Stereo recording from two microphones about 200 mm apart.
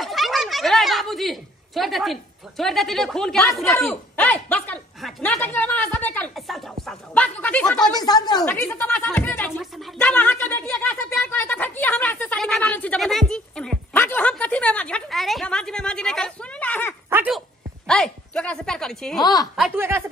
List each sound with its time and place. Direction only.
0.0 s a woman's voice: centre (ahead or behind)
7.9 s speech: 20° left (ahead or behind)
8.5 s a woman's voice: 10° left (ahead or behind)
17.1 s speech: 10° right (ahead or behind)
17.8 s a woman's voice: 5° left (ahead or behind)
19.8 s a woman's voice: 10° right (ahead or behind)